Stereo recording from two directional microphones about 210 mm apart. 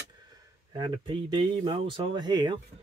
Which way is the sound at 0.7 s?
25° right (ahead or behind).